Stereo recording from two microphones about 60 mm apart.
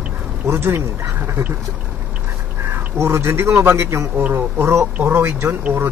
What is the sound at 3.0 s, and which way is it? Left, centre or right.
A man's voice, right.